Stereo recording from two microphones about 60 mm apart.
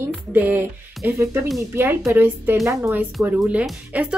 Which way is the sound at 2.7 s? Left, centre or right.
Right.